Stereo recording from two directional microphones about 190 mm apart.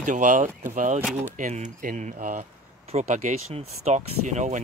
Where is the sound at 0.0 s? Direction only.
40° right (ahead or behind).